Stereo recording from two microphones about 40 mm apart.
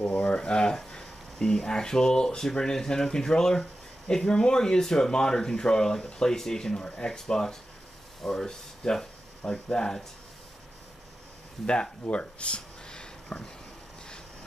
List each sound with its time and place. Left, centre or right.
0.0 s speech: left
11.6 s speech: left